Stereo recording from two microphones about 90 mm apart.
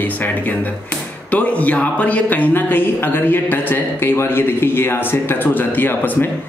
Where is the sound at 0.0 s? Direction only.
20° left (ahead or behind).